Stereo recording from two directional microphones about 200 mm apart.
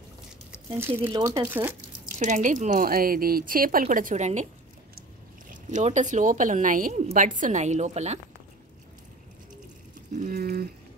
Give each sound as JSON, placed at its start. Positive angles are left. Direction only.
{"t": 0.7, "sound": "speech", "side_deg": -10}
{"t": 1.0, "sound": "speech", "side_deg": -25}
{"t": 1.4, "sound": "speech", "side_deg": -10}
{"t": 2.0, "sound": "speech", "side_deg": -40}
{"t": 5.5, "sound": "speech", "side_deg": -35}
{"t": 10.3, "sound": "speech", "side_deg": -50}